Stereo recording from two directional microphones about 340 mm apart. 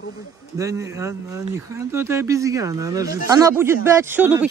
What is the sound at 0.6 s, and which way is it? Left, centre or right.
Speech, centre.